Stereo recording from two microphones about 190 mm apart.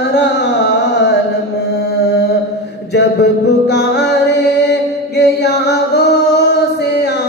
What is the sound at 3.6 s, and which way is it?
Music, 60° left (ahead or behind).